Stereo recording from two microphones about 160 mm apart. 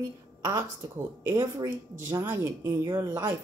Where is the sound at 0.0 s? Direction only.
15° right (ahead or behind).